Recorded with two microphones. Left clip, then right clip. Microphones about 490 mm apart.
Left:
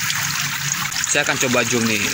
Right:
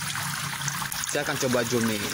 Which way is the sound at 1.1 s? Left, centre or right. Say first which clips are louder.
Left 7 dB; right.